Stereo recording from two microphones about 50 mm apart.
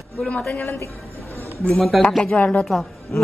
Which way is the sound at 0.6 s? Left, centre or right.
Left.